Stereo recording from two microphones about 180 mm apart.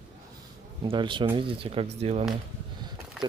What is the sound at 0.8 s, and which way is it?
Speech, 25° right (ahead or behind).